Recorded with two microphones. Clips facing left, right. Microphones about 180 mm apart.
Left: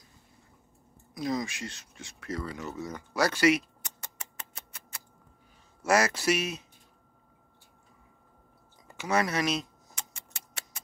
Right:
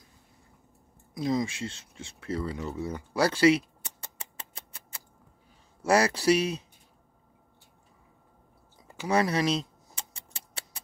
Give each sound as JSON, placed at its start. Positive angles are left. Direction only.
{"t": 1.1, "sound": "speech", "side_deg": -25}
{"t": 3.2, "sound": "a sound", "side_deg": -30}
{"t": 5.8, "sound": "speech", "side_deg": -30}
{"t": 8.8, "sound": "keys jangling", "side_deg": -30}